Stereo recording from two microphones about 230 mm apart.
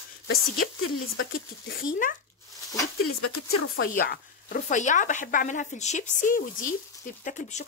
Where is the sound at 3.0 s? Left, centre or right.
Left.